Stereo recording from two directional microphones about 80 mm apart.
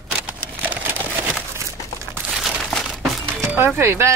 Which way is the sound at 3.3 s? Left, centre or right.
Right.